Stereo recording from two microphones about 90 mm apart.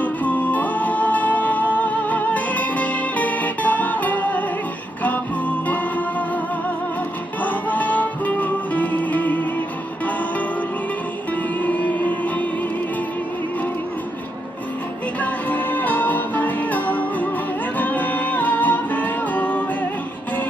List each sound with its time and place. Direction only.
0.0 s music: 15° left (ahead or behind)
5.7 s music: 15° left (ahead or behind)
7.4 s music: 15° left (ahead or behind)
11.6 s music: 15° left (ahead or behind)
15.1 s music: 20° left (ahead or behind)